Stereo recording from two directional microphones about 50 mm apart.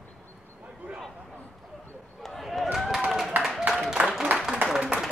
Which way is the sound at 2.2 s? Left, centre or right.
Centre.